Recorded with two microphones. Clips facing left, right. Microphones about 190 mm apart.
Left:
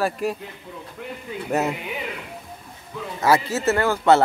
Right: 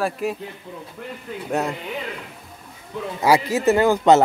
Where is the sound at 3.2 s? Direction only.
15° right (ahead or behind).